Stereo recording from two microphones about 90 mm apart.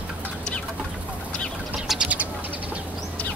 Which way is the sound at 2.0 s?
15° right (ahead or behind).